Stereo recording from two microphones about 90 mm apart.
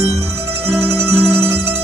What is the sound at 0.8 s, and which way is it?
Music, 30° right (ahead or behind).